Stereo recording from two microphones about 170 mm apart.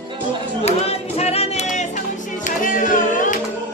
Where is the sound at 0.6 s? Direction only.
40° left (ahead or behind).